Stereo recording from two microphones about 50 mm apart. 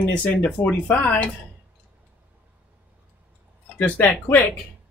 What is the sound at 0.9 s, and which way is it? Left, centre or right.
Speech, left.